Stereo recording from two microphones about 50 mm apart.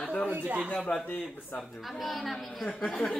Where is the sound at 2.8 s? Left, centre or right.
Left.